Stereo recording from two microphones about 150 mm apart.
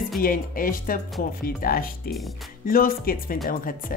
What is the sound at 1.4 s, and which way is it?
Speech, 75° left (ahead or behind).